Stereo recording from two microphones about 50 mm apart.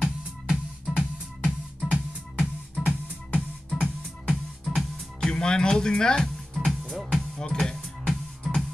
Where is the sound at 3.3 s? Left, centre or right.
Left.